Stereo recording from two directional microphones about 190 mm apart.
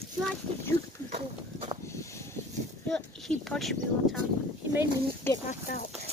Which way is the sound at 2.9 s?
5° left (ahead or behind).